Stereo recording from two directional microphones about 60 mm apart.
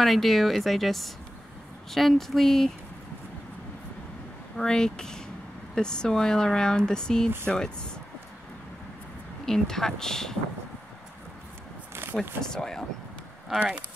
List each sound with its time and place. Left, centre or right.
0.0 s speech: centre
4.6 s speech: centre
9.5 s speech: centre
11.9 s a sound: right
12.4 s speech: centre
13.5 s speech: centre